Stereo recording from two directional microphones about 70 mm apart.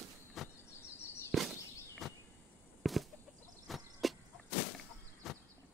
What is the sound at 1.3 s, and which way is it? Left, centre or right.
Walk, centre.